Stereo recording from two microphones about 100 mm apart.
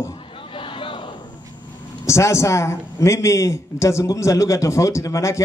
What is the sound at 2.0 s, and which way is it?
A man's voice, 30° left (ahead or behind).